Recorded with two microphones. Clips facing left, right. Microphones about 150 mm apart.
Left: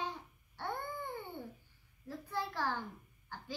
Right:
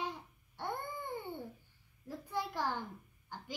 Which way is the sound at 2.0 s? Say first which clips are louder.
Right 1 dB; 15° right (ahead or behind).